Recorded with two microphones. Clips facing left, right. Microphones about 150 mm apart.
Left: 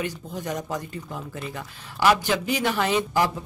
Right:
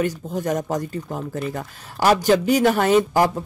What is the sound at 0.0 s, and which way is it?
Speech, 45° right (ahead or behind).